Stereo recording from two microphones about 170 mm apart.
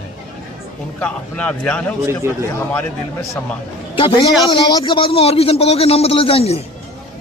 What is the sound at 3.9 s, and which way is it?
A man's voice, 30° left (ahead or behind).